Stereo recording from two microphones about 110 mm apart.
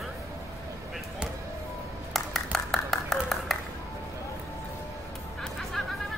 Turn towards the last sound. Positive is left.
turn(degrees=0)  # may be behind; listen again after turning